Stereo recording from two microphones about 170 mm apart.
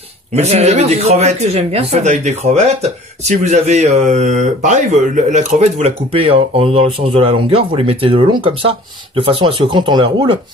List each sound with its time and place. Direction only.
0.3 s speech: 40° right (ahead or behind)